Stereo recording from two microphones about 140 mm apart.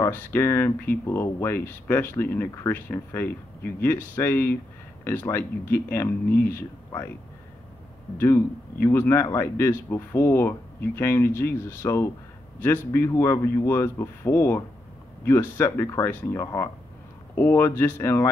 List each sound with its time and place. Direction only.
0.0 s speech: 15° left (ahead or behind)
8.2 s a man's voice: 20° left (ahead or behind)